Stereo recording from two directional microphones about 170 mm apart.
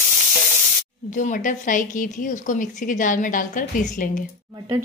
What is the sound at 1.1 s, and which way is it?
A woman's voice, 50° left (ahead or behind).